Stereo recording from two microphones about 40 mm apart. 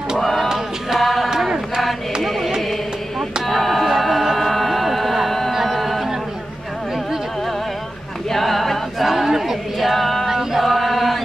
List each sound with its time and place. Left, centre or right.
0.2 s a sound: centre
0.9 s music: centre
1.3 s chant: centre
2.2 s music: centre
5.5 s music: centre
5.8 s music: centre
8.3 s choir: centre
10.2 s chant: centre